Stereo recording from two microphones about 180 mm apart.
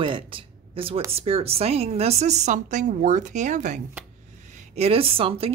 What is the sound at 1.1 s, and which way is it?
Speech, 35° right (ahead or behind).